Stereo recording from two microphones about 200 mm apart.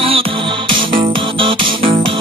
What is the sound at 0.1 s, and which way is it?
Music, 25° right (ahead or behind).